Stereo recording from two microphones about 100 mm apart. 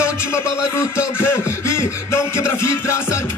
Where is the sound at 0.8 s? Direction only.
25° left (ahead or behind).